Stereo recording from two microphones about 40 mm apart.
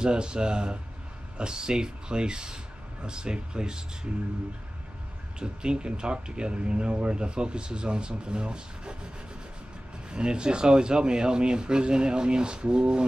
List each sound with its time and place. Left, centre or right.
0.0 s speech: right
5.4 s speech: right
10.0 s speech: right